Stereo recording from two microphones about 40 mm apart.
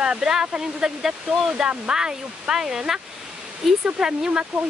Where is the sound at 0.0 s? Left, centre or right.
Centre.